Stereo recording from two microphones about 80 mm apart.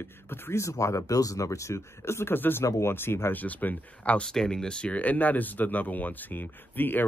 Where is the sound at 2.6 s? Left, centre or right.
Left.